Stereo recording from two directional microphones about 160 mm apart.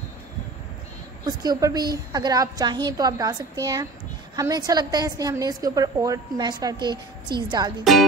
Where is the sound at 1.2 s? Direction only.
25° right (ahead or behind).